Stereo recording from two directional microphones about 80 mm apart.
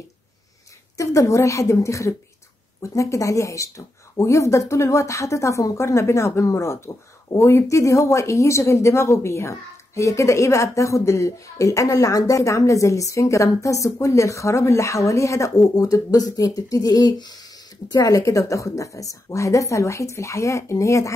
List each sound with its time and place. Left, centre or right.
0.9 s speech: left
17.9 s speech: left